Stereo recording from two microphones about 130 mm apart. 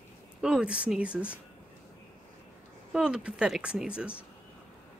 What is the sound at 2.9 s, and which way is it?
Speech, 5° right (ahead or behind).